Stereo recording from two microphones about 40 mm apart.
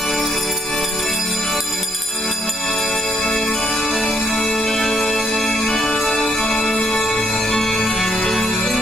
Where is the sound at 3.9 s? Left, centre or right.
Centre.